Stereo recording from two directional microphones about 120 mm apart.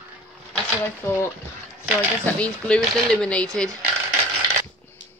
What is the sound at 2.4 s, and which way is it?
Speech, 10° left (ahead or behind).